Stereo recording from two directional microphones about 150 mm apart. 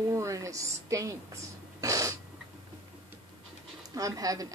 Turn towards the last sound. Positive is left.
turn(degrees=-25)  # may be behind; listen again after turning